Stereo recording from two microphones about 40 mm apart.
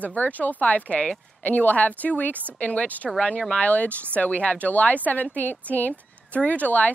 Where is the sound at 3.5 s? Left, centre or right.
Left.